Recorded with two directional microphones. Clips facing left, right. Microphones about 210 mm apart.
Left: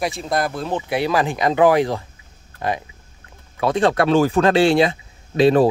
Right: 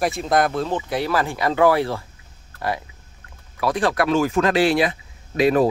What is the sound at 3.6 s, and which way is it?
Speech, 25° left (ahead or behind).